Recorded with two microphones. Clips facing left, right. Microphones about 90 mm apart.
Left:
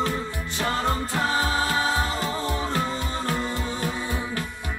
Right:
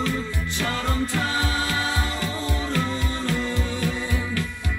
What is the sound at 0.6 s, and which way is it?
Music, 35° left (ahead or behind).